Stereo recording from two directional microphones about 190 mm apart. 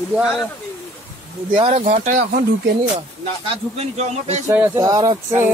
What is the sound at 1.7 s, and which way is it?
Speech, 40° right (ahead or behind).